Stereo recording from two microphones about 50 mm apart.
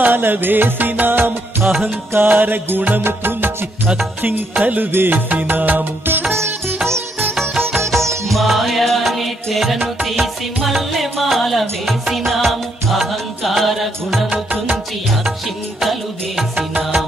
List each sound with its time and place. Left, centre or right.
0.0 s music: right
4.6 s music: right
4.9 s music: right
8.3 s music: centre
15.8 s music: centre